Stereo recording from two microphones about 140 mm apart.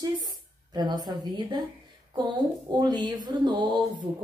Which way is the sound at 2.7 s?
30° right (ahead or behind).